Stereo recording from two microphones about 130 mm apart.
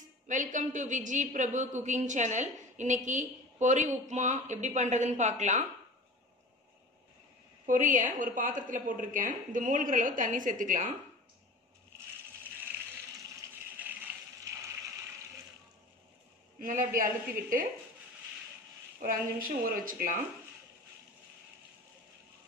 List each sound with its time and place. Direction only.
0.3 s a woman's voice: 80° right
7.6 s a woman's voice: 90° right
13.8 s a sound: 10° right (ahead or behind)
14.5 s water: 20° right (ahead or behind)
16.5 s a woman's voice: 90° right
18.9 s a woman's voice: 90° right